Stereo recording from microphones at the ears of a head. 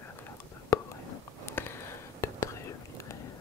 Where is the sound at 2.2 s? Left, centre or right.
Left.